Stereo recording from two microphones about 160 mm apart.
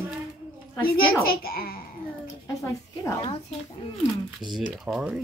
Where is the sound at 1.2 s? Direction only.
70° left (ahead or behind).